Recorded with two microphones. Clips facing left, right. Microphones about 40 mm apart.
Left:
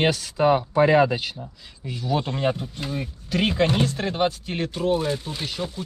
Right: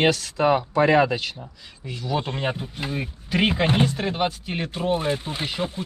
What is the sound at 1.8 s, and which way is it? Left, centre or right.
Speech, centre.